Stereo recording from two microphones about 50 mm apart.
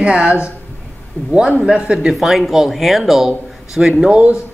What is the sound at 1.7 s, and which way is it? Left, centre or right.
Speech, centre.